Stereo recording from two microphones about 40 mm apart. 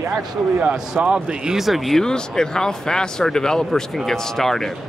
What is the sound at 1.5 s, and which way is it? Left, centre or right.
Speech, centre.